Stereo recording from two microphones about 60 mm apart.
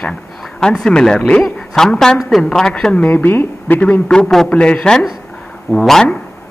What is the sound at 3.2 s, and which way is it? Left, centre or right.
Speech, left.